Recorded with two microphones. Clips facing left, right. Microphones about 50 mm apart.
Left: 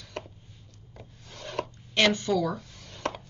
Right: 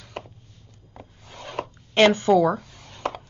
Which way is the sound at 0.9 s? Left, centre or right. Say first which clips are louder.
Right 4 dB; centre.